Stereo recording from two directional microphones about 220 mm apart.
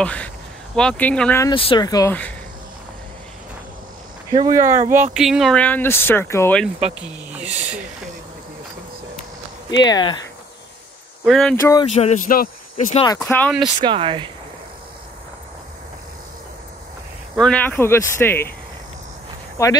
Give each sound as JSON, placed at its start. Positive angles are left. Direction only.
{"t": 0.0, "sound": "speech", "side_deg": 5}
{"t": 1.5, "sound": "speech", "side_deg": 25}
{"t": 4.3, "sound": "speech", "side_deg": -15}
{"t": 9.8, "sound": "speech", "side_deg": 20}
{"t": 11.2, "sound": "speech", "side_deg": 0}
{"t": 11.9, "sound": "speech", "side_deg": 30}
{"t": 13.2, "sound": "speech", "side_deg": 5}
{"t": 13.7, "sound": "speech", "side_deg": -20}
{"t": 17.4, "sound": "speech", "side_deg": 5}
{"t": 19.6, "sound": "speech", "side_deg": 15}